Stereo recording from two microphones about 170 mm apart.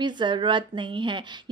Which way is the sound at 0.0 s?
30° right (ahead or behind).